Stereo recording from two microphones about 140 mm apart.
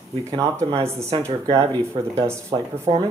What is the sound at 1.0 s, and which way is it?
Speech, 35° right (ahead or behind).